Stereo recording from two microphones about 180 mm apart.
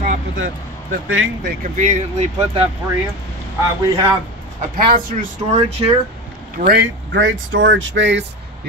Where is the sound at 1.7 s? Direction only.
40° right (ahead or behind).